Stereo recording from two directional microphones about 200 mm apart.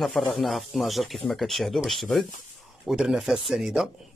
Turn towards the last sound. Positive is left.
turn(degrees=0)  # may be behind; listen again after turning